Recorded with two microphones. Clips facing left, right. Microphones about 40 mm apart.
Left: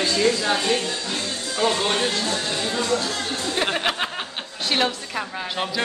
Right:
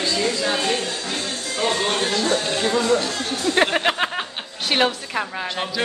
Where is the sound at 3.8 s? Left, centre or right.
Centre.